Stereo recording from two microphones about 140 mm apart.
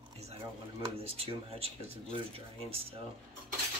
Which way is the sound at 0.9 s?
45° right (ahead or behind).